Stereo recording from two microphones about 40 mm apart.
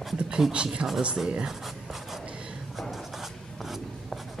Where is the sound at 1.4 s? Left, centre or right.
Centre.